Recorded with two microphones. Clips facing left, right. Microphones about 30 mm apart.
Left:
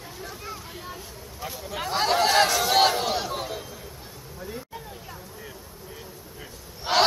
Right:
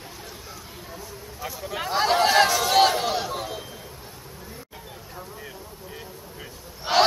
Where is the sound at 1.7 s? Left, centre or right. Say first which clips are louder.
Right 2 dB; centre.